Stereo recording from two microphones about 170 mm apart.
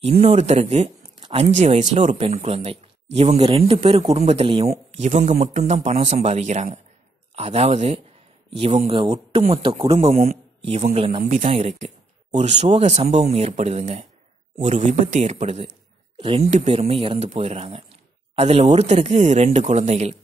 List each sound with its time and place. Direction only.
0.2 s a man's voice: 40° right (ahead or behind)
4.9 s a man's voice: 45° right (ahead or behind)